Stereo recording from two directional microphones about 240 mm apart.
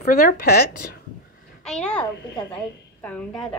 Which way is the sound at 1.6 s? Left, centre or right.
Centre.